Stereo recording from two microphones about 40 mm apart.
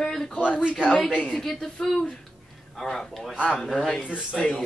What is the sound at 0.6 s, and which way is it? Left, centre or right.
Speech, right.